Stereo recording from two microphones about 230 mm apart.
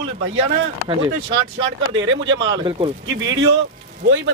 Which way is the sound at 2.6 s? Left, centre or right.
Right.